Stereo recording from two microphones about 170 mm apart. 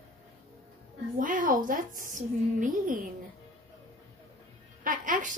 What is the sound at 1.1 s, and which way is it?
A child's voice, 50° right (ahead or behind).